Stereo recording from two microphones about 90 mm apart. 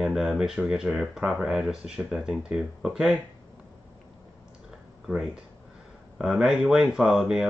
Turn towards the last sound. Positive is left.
turn(degrees=-5)  # may be behind; listen again after turning